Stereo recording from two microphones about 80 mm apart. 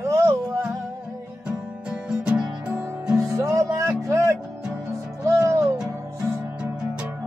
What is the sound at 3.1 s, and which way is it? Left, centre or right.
Music, right.